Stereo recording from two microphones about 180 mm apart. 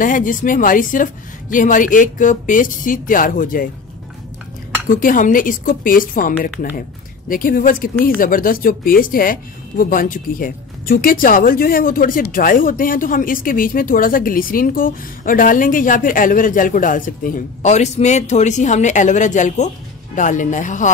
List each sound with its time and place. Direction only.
0.0 s speech: 45° left (ahead or behind)
4.8 s speech: 50° left (ahead or behind)